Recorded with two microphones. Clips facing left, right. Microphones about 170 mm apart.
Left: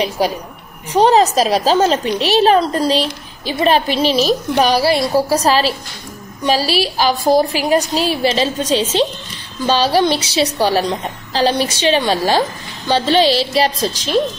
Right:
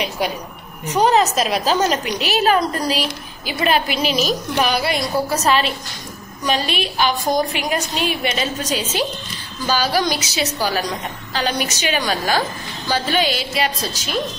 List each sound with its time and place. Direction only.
0.8 s a woman's voice: 30° left (ahead or behind)